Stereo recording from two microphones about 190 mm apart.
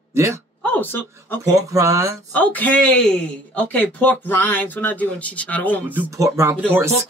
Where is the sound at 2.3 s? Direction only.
10° left (ahead or behind).